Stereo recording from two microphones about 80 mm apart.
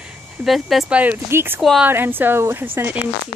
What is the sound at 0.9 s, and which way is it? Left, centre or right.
Speech, right.